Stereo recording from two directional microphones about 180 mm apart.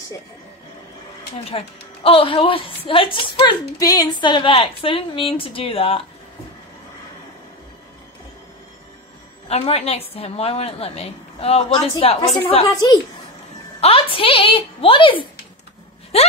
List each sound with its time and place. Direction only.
1.5 s a woman's voice: 30° left (ahead or behind)
9.5 s a woman's voice: 35° left (ahead or behind)
13.7 s a woman's voice: 30° left (ahead or behind)